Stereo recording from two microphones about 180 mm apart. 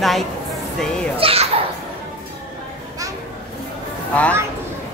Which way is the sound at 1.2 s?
35° right (ahead or behind).